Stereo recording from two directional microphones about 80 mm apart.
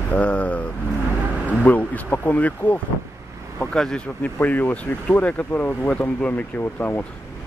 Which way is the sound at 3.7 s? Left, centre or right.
Centre.